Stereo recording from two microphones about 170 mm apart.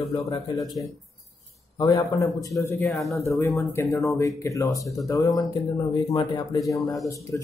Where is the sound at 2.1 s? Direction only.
20° left (ahead or behind).